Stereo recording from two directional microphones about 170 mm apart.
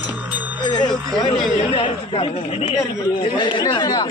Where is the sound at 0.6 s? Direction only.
25° left (ahead or behind).